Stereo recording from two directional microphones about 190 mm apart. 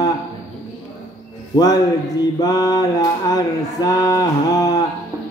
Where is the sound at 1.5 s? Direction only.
20° left (ahead or behind).